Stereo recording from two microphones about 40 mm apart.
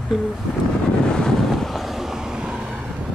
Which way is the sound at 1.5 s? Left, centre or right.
Centre.